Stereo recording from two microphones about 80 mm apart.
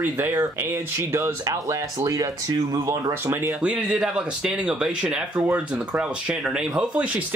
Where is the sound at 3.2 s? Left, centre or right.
Right.